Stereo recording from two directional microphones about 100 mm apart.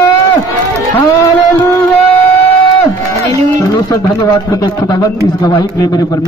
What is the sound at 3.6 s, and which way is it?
A man's voice, 40° left (ahead or behind).